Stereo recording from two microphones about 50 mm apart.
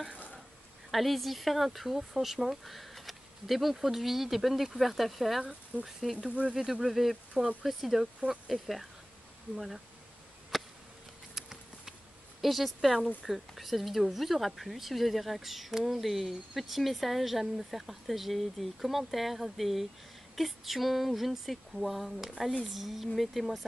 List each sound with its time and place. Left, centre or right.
0.9 s speech: centre
5.4 s speech: right
5.9 s speech: centre
10.5 s a sound: centre
11.3 s patter: centre
12.4 s speech: centre